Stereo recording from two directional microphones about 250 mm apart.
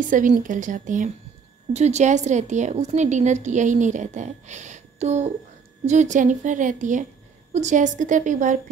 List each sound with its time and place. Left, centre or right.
0.1 s a woman's voice: right